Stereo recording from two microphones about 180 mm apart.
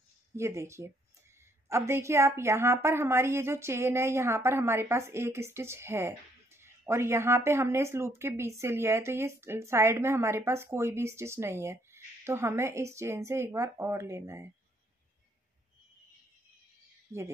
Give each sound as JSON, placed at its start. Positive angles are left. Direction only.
{"t": 0.4, "sound": "a woman's voice", "side_deg": -15}